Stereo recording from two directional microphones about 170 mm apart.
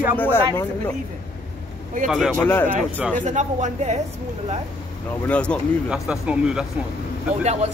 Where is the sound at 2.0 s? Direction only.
Centre (ahead or behind).